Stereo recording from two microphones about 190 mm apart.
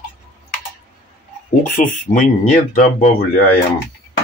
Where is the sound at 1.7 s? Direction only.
45° left (ahead or behind).